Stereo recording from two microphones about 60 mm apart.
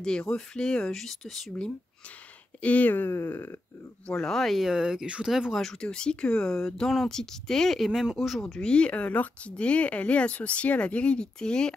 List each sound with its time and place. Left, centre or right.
0.0 s speech: centre
2.6 s speech: left
3.1 s speech: left
4.1 s speech: centre
4.7 s speech: centre
5.5 s speech: centre
5.8 s speech: centre
8.4 s speech: centre